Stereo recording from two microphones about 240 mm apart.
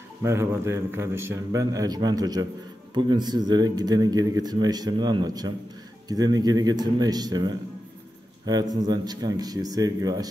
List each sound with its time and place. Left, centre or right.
0.2 s speech: centre